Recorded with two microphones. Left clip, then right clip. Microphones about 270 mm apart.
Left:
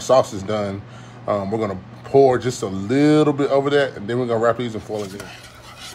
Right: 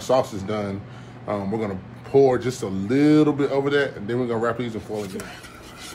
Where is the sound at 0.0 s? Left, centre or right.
Left.